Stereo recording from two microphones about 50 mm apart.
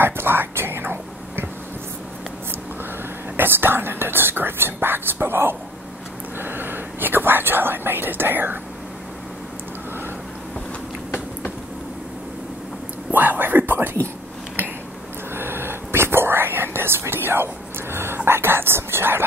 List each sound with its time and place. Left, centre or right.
0.0 s whispering: right
3.3 s whispering: right
13.1 s whispering: right
15.3 s whispering: right
17.9 s speech: right